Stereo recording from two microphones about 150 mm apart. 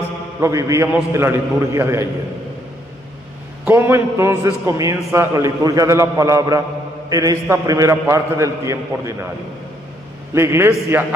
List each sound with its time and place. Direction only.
0.4 s a man's voice: 20° right (ahead or behind)
3.6 s a man's voice: 15° right (ahead or behind)
10.3 s a man's voice: 15° right (ahead or behind)